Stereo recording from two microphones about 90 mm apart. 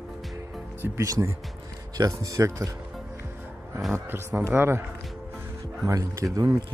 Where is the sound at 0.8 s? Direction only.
35° right (ahead or behind).